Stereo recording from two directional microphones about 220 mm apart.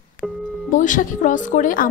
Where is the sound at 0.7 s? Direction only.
35° left (ahead or behind).